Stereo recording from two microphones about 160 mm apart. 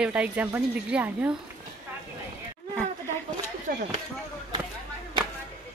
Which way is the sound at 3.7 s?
65° right (ahead or behind).